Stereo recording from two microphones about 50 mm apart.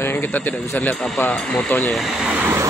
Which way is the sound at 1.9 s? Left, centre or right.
Centre.